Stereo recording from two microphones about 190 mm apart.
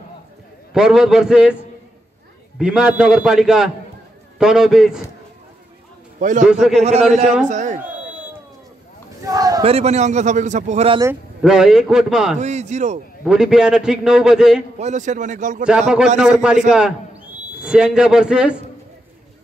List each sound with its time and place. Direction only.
0.7 s a man's voice: 5° right (ahead or behind)
2.6 s a man's voice: 5° right (ahead or behind)
6.1 s a man's voice: 40° right (ahead or behind)
6.4 s a man's voice: centre (ahead or behind)
7.4 s a man's voice: 40° right (ahead or behind)
9.2 s a sound: 20° right (ahead or behind)
9.6 s a man's voice: 30° right (ahead or behind)
11.4 s a man's voice: 5° right (ahead or behind)
12.4 s a man's voice: 35° right (ahead or behind)
13.2 s a man's voice: 5° right (ahead or behind)
14.8 s a man's voice: 40° right (ahead or behind)
15.6 s a man's voice: 5° right (ahead or behind)